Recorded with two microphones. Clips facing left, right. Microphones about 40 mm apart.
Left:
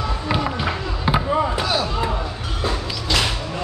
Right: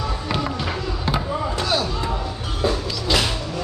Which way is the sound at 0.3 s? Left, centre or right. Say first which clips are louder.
Left 3 dB; centre.